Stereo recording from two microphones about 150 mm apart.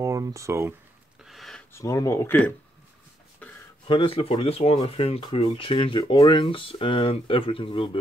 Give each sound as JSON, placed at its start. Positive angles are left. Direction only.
{"t": 0.0, "sound": "speech", "side_deg": -20}
{"t": 1.2, "sound": "a sound", "side_deg": 0}
{"t": 1.7, "sound": "speech", "side_deg": 20}
{"t": 3.8, "sound": "speech", "side_deg": 35}